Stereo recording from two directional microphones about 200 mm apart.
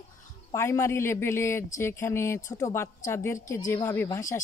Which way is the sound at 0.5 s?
15° left (ahead or behind).